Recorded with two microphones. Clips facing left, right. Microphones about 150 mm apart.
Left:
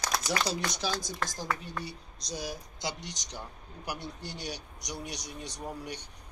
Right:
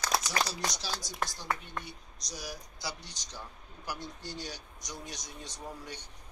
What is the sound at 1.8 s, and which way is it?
Speech, 25° left (ahead or behind).